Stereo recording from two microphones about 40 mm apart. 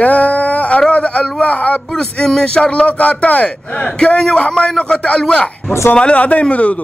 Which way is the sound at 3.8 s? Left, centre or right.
Centre.